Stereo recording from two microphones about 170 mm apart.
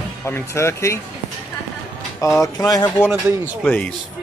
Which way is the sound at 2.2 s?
20° left (ahead or behind).